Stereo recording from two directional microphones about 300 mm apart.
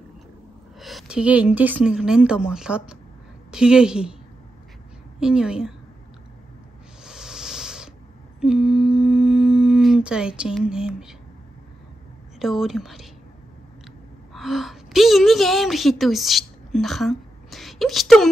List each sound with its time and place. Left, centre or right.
0.7 s a woman's voice: centre
5.2 s a woman's voice: centre
7.1 s a sound: centre
8.4 s humming: centre
12.4 s a woman's voice: centre
14.3 s a woman's voice: centre